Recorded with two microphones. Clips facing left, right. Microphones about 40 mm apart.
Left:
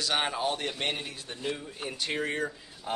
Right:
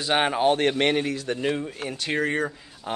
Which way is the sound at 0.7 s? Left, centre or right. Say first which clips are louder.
Right 11 dB; right.